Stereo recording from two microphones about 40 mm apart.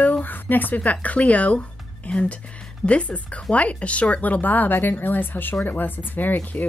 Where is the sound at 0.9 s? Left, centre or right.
Left.